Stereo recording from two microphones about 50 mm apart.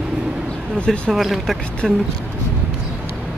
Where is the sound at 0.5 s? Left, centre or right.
Centre.